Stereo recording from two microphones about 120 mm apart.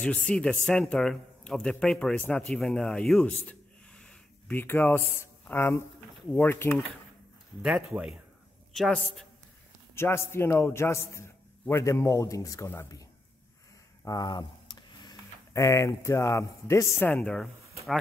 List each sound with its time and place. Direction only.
0.0 s a man's voice: 10° left (ahead or behind)
7.6 s speech: 10° right (ahead or behind)
8.7 s a woman's voice: centre (ahead or behind)
9.9 s a man's voice: 20° left (ahead or behind)
14.0 s speech: 35° left (ahead or behind)
17.1 s speech: 10° left (ahead or behind)